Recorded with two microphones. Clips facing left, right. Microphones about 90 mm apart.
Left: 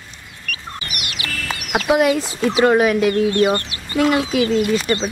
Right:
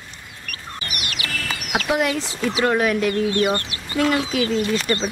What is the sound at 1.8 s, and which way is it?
Speech, 15° left (ahead or behind).